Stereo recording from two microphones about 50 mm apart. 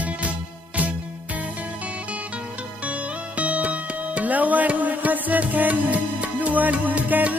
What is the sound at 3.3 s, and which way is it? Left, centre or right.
Music, right.